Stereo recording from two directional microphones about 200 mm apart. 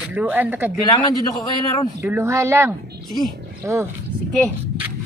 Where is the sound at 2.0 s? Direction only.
15° right (ahead or behind).